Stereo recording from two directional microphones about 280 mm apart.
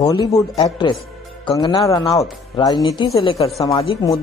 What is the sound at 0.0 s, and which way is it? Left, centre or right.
A woman's voice, centre.